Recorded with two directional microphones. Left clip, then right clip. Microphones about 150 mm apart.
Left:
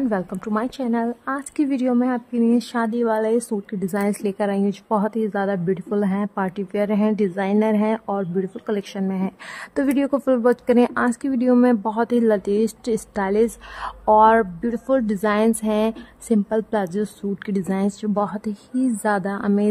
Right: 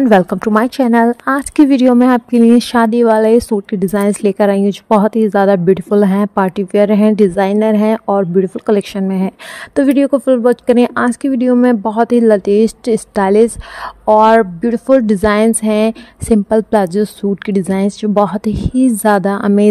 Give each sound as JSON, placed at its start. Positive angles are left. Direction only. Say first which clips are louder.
{"t": 0.0, "sound": "a woman's voice", "louder": "right 14 dB", "side_deg": -50}
{"t": 9.8, "sound": "a woman's voice", "louder": "right 9 dB", "side_deg": -25}